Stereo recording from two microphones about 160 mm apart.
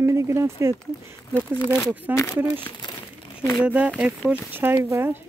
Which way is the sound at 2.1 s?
10° right (ahead or behind).